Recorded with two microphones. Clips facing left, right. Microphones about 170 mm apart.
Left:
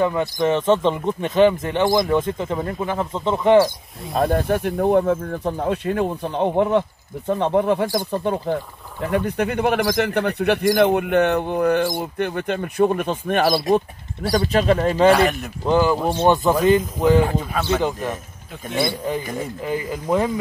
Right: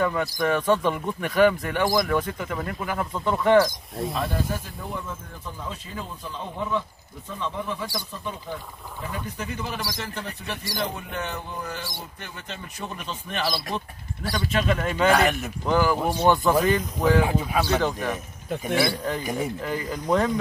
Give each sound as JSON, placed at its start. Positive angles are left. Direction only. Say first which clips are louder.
{"t": 0.0, "sound": "speech", "louder": "left 5 dB", "side_deg": 20}
{"t": 4.1, "sound": "speech", "louder": "left 11 dB", "side_deg": 50}
{"t": 9.9, "sound": "speech", "louder": "left 14 dB", "side_deg": 70}
{"t": 10.8, "sound": "speech", "louder": "left 11 dB", "side_deg": 70}
{"t": 15.0, "sound": "speech", "louder": "left 4 dB", "side_deg": 0}
{"t": 15.6, "sound": "speech", "louder": "left 4 dB", "side_deg": 20}
{"t": 17.2, "sound": "speech", "louder": "left 2 dB", "side_deg": -10}
{"t": 17.6, "sound": "speech", "louder": "left 3 dB", "side_deg": 15}
{"t": 19.2, "sound": "speech", "louder": "even", "side_deg": -10}
{"t": 20.1, "sound": "speech", "louder": "left 2 dB", "side_deg": 25}